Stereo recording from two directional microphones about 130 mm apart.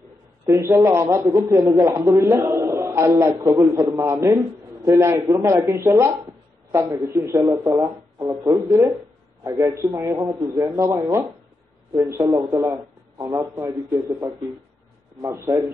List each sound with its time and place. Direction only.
0.5 s a man's voice: 25° right (ahead or behind)
4.0 s a man's voice: 20° right (ahead or behind)